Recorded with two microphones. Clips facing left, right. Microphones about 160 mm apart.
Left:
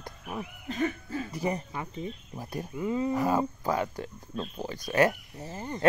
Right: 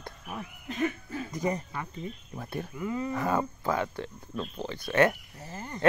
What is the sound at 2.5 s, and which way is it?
Speech, 20° left (ahead or behind).